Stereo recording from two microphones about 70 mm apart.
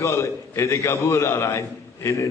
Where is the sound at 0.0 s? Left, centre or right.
Left.